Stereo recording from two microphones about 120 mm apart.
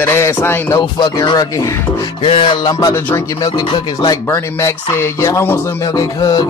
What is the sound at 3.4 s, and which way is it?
Speech, 35° left (ahead or behind).